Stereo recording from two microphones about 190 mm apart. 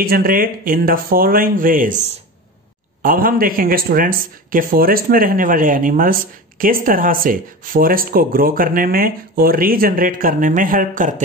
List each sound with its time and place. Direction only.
0.0 s speech: 50° right (ahead or behind)